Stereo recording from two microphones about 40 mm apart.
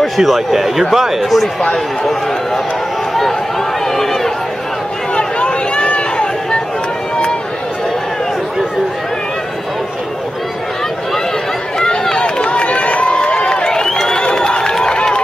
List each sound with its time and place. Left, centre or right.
0.0 s speech: centre
3.8 s a sound: centre
5.1 s run: left
12.2 s run: left
14.0 s crowd: centre